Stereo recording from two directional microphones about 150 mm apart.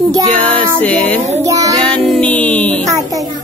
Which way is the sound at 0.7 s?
10° left (ahead or behind).